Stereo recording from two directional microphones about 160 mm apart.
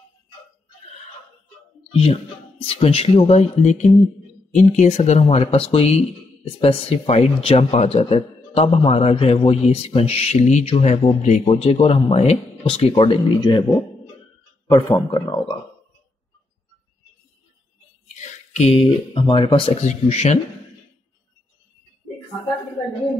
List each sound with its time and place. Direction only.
1.9 s a man's voice: 40° left (ahead or behind)
14.7 s speech: 25° left (ahead or behind)
18.5 s speech: 45° left (ahead or behind)
19.2 s speech: 30° left (ahead or behind)
19.8 s speech: 45° left (ahead or behind)